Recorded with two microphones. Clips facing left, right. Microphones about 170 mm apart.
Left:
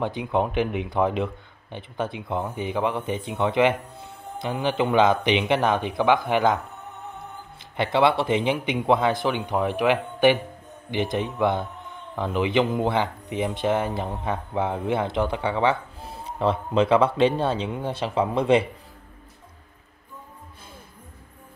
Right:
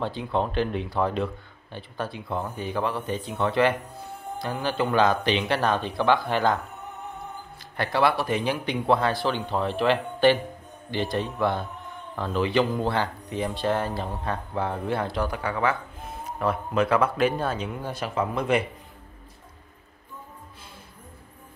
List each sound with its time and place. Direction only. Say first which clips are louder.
0.0 s speech: left 2 dB; 15° left (ahead or behind)
7.7 s speech: left 3 dB; 20° left (ahead or behind)